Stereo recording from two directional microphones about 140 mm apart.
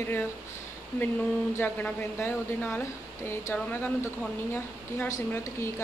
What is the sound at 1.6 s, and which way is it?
Speech, 15° left (ahead or behind).